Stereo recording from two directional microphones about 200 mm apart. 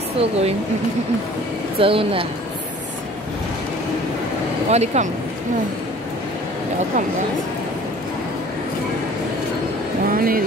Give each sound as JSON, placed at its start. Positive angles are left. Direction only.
{"t": 0.2, "sound": "speech", "side_deg": -30}
{"t": 1.8, "sound": "speech", "side_deg": -25}
{"t": 4.6, "sound": "speech", "side_deg": -35}
{"t": 10.1, "sound": "speech", "side_deg": -45}